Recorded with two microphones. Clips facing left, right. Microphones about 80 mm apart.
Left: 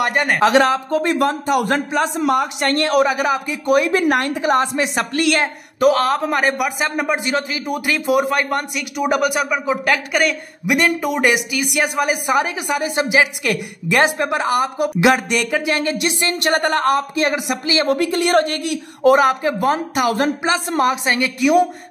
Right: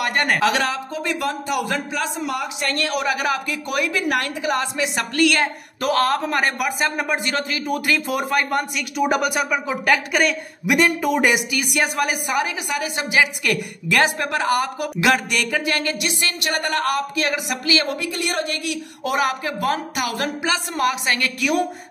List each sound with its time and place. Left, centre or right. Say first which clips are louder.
0.1 s a man's voice: left 2 dB; centre
0.4 s a man's voice: left 6 dB; left
0.9 s a man's voice: left 7 dB; left
3.1 s a woman's voice: left 3 dB; left
3.9 s a man's voice: left 5 dB; left
5.1 s a woman's voice: right 1 dB; left
5.8 s a man's voice: left 4 dB; centre
12.3 s a woman's voice: left 4 dB; left
13.1 s a woman's voice: right 1 dB; centre
17.8 s a woman's voice: left 8 dB; left
18.6 s a woman's voice: left 8 dB; left